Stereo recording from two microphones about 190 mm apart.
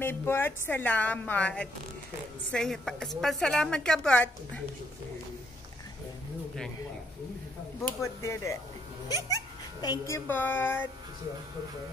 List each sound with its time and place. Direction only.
0.0 s a woman's voice: 10° left (ahead or behind)
8.0 s a woman's voice: 15° left (ahead or behind)